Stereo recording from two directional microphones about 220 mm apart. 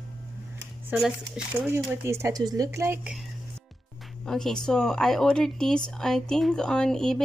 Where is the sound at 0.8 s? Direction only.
5° right (ahead or behind).